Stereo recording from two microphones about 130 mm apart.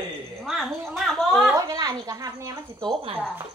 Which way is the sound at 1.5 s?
30° right (ahead or behind).